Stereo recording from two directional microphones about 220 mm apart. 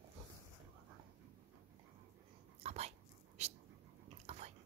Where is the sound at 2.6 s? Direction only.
30° right (ahead or behind).